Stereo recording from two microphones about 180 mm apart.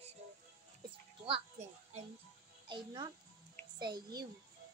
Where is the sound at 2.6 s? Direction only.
25° right (ahead or behind).